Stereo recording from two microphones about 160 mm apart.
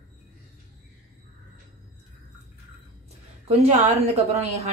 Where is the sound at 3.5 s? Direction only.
45° right (ahead or behind).